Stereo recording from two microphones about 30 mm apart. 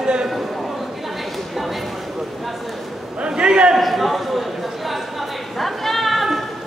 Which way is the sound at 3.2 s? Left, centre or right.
Right.